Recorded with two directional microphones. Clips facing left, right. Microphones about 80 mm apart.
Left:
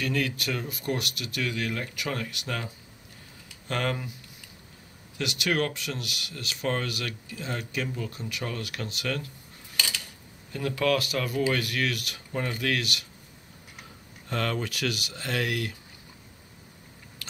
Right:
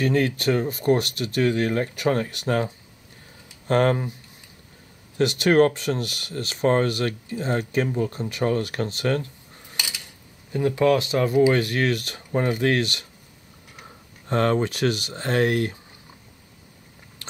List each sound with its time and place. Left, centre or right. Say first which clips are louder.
0.0 s speech: right 8 dB; right
5.1 s speech: right 10 dB; right
9.8 s a sound: left 1 dB; centre
10.5 s speech: right 6 dB; right
14.3 s speech: right 9 dB; right
17.2 s biting: right 4 dB; right